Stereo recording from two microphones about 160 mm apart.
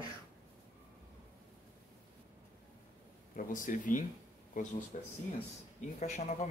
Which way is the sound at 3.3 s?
55° left (ahead or behind).